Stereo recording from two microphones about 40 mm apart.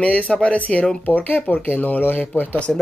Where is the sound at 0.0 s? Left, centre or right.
Left.